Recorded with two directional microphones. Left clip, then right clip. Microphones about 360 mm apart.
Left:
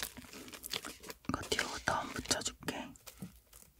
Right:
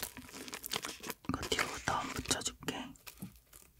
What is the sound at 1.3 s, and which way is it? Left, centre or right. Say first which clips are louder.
Whispering: even; centre.